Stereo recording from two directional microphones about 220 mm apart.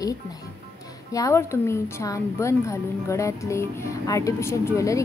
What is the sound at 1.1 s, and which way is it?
A woman's voice, 15° left (ahead or behind).